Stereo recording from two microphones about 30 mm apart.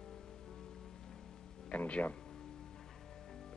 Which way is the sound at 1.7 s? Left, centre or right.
Left.